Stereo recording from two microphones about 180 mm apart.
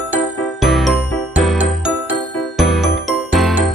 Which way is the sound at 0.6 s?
Centre (ahead or behind).